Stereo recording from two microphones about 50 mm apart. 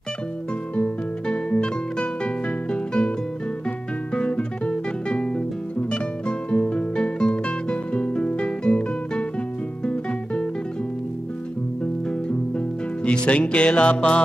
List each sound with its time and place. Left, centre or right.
0.7 s music: left
8.4 s guitar: centre
9.8 s music: left
11.8 s music: left